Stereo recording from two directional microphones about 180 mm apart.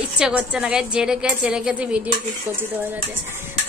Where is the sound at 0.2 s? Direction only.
5° right (ahead or behind).